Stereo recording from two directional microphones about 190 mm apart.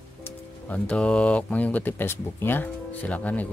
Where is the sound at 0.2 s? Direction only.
5° left (ahead or behind).